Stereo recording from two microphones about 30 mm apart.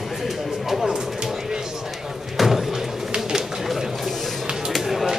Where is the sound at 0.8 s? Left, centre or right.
Right.